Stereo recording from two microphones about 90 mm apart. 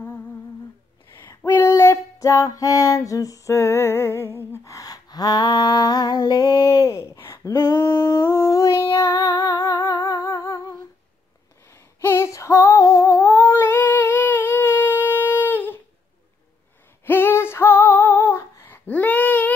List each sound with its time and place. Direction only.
1.5 s a sound: 25° left (ahead or behind)
2.1 s music: 40° left (ahead or behind)
6.4 s a sound: 35° left (ahead or behind)
7.4 s female singing: 30° left (ahead or behind)
11.7 s female singing: 25° left (ahead or behind)
17.0 s female singing: 25° left (ahead or behind)